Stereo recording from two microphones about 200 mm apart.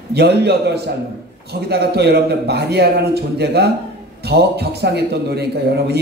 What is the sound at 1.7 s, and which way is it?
A man's voice, 55° right (ahead or behind).